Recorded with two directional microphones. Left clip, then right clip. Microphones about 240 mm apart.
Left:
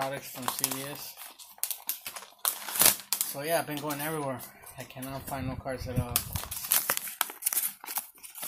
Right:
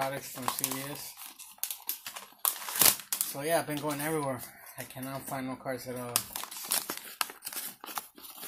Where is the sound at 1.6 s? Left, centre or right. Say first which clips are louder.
Left 2 dB; centre.